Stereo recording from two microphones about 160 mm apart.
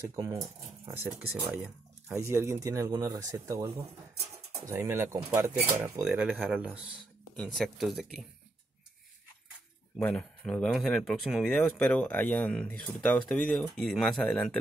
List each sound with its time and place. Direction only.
0.1 s speech: 20° right (ahead or behind)
1.5 s speech: centre (ahead or behind)
2.1 s speech: 15° right (ahead or behind); by 8.3 s centre (ahead or behind)
9.9 s speech: 10° left (ahead or behind)